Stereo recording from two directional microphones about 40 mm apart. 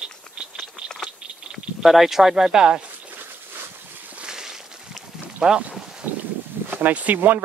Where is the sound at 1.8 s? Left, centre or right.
Centre.